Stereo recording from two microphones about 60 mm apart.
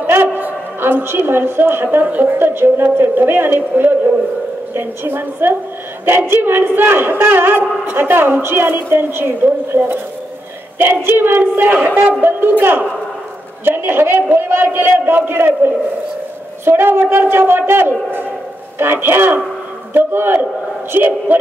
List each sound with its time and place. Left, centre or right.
0.0 s a woman's voice: right